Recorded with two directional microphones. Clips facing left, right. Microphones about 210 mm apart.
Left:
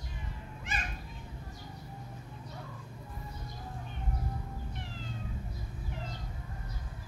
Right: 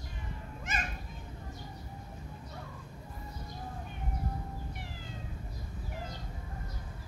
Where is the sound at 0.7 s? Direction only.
45° right (ahead or behind).